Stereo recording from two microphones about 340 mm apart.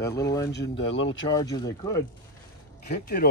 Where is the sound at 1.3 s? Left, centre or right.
Centre.